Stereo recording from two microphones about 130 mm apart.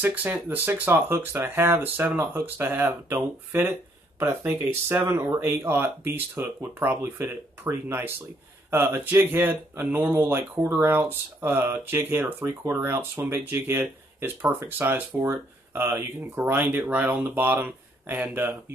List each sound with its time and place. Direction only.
0.0 s speech: 15° right (ahead or behind)